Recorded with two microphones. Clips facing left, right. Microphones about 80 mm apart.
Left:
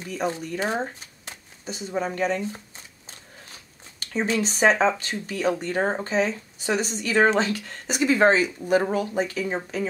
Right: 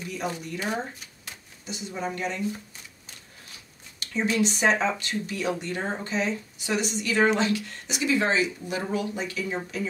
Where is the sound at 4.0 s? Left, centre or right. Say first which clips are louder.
Even; left.